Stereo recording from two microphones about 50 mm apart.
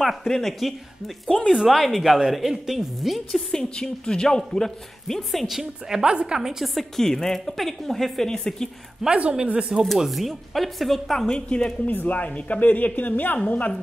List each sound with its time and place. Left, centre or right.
0.0 s a woman's voice: centre
3.3 s a woman's voice: centre
5.6 s a man's voice: centre
6.6 s a woman's voice: centre
9.1 s speech: right
9.9 s a woman's voice: centre
11.8 s a woman's voice: left